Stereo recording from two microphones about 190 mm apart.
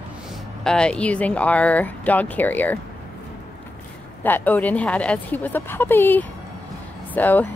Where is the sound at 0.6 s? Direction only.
5° left (ahead or behind).